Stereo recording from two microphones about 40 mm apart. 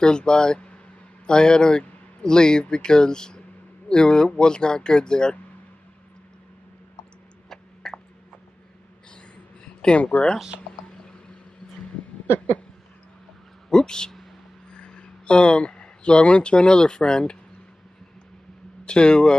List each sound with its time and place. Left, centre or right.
0.0 s speech: left
7.4 s a sound: centre
9.9 s speech: left
10.9 s a sound: left
13.7 s speech: centre
18.9 s speech: left